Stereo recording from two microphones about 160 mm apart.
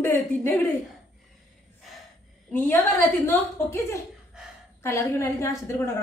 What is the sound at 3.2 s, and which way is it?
A woman's voice, 15° left (ahead or behind).